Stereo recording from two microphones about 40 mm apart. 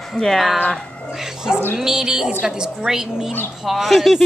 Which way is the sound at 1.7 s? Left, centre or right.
Centre.